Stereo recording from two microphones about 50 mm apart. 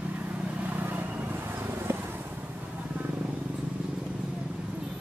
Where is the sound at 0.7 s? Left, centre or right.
Right.